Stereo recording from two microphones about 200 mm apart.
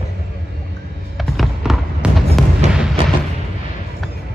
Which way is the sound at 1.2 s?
Centre (ahead or behind).